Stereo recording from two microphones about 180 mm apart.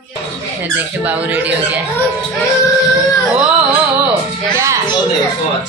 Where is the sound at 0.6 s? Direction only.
10° right (ahead or behind).